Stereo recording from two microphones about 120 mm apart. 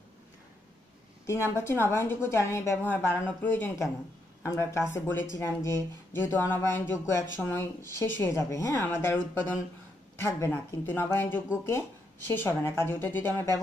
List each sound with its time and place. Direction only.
1.5 s speech: 20° left (ahead or behind)